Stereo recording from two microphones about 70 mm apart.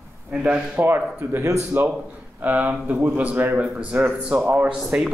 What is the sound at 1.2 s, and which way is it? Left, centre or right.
Speech, right.